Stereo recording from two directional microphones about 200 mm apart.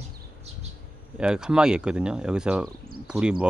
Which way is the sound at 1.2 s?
5° right (ahead or behind).